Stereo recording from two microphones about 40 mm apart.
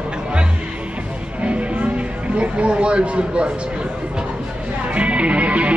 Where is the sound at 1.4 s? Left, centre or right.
Right.